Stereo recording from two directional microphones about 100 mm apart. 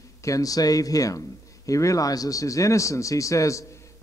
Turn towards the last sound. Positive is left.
turn(degrees=30)  # may be behind; listen again after turning